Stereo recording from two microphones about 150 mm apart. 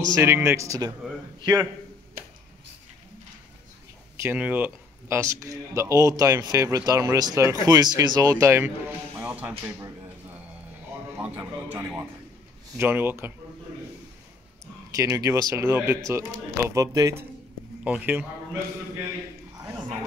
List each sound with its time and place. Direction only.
0.1 s a man's voice: 15° right (ahead or behind)
4.2 s speech: 10° right (ahead or behind)
11.1 s speech: 10° right (ahead or behind)
15.0 s a man's voice: 20° right (ahead or behind)